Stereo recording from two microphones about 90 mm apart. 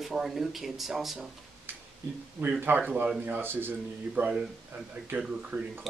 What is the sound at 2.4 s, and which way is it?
Speech, 20° right (ahead or behind).